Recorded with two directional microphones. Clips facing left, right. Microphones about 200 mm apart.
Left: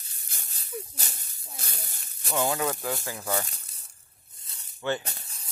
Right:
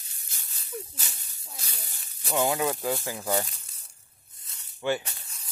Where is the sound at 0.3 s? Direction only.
50° left (ahead or behind).